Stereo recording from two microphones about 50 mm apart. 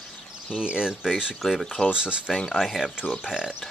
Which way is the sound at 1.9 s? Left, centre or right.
Centre.